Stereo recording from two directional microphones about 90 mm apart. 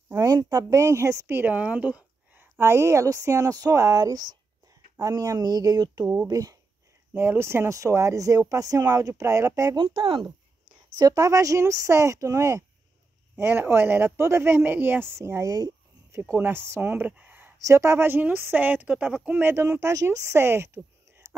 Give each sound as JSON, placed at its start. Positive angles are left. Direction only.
{"t": 0.1, "sound": "a woman's voice", "side_deg": -40}
{"t": 2.6, "sound": "a woman's voice", "side_deg": -30}
{"t": 7.2, "sound": "a woman's voice", "side_deg": -25}
{"t": 9.8, "sound": "speech", "side_deg": -70}
{"t": 11.0, "sound": "a woman's voice", "side_deg": -40}
{"t": 13.4, "sound": "a woman's voice", "side_deg": -25}
{"t": 16.1, "sound": "speech", "side_deg": -25}
{"t": 17.6, "sound": "speech", "side_deg": -30}